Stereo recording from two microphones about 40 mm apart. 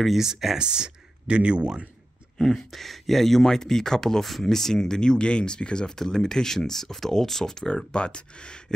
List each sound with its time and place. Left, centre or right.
0.2 s speech: centre
0.6 s speech: right
2.3 s speech: centre
7.6 s speech: left